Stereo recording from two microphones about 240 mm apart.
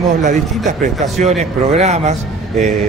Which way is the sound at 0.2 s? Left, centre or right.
Right.